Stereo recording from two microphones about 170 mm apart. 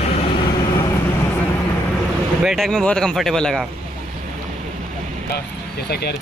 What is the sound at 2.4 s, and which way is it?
Speech, centre (ahead or behind).